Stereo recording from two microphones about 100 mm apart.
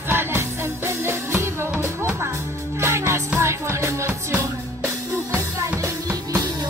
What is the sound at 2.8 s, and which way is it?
Music, 25° right (ahead or behind).